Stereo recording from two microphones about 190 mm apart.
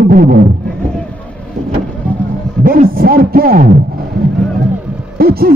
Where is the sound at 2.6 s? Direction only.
50° right (ahead or behind).